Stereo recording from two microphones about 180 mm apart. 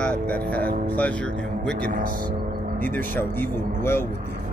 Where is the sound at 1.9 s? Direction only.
50° right (ahead or behind).